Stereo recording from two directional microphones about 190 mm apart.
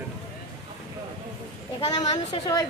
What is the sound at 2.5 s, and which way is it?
Speech, 15° left (ahead or behind).